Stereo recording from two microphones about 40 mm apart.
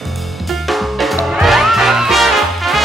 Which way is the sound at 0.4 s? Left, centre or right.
Centre.